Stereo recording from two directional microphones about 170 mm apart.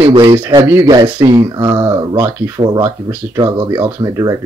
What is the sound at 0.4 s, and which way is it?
Speech, 15° right (ahead or behind).